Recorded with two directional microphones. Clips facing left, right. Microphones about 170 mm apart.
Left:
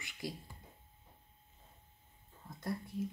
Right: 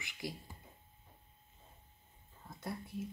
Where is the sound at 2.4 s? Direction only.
Centre (ahead or behind).